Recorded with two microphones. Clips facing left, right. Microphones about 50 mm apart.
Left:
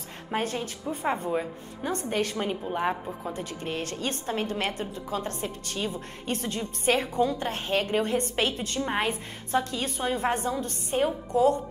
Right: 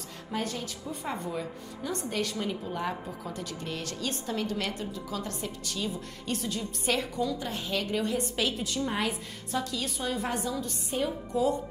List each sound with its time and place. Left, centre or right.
0.3 s a woman's voice: left